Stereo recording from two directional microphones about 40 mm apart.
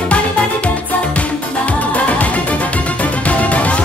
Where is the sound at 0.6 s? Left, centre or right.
Left.